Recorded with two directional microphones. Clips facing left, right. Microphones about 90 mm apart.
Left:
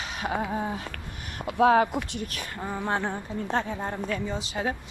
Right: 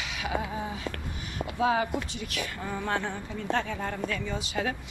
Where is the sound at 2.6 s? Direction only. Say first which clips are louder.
Left 3 dB; 25° left (ahead or behind).